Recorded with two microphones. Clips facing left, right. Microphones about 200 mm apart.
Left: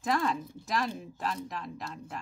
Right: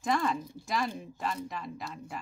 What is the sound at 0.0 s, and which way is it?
A woman's voice, centre (ahead or behind).